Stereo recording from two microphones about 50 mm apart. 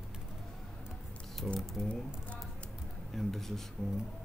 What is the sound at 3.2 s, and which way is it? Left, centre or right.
Speech, centre.